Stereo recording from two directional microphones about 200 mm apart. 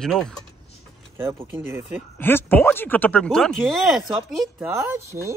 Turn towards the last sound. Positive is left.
turn(degrees=-10)  # may be behind; listen again after turning